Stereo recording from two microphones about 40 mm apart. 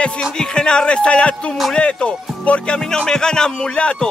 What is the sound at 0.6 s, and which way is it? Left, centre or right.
Speech, left.